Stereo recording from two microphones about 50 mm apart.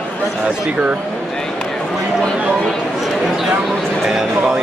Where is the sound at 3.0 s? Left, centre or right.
Centre.